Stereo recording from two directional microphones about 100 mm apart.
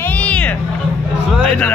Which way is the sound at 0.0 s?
15° left (ahead or behind).